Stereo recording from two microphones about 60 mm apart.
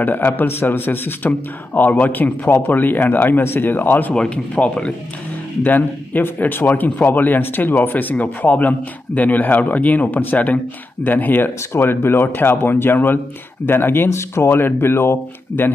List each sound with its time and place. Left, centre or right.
0.0 s a man's voice: left
4.1 s speech: centre
5.6 s a man's voice: left